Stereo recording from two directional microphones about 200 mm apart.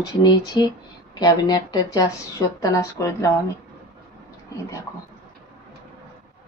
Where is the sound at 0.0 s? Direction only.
20° left (ahead or behind).